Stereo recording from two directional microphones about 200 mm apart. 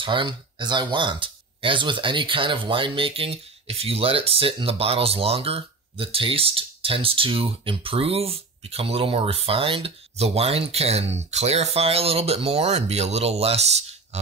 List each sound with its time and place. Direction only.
0.0 s speech: 25° right (ahead or behind)